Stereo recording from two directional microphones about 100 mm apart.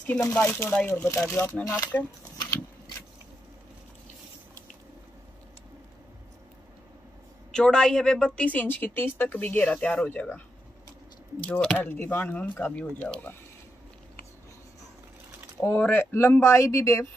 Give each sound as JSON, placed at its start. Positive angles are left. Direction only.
{"t": 0.3, "sound": "speech", "side_deg": 15}
{"t": 7.5, "sound": "a woman's voice", "side_deg": 5}
{"t": 11.4, "sound": "a woman's voice", "side_deg": 10}
{"t": 15.6, "sound": "speech", "side_deg": 20}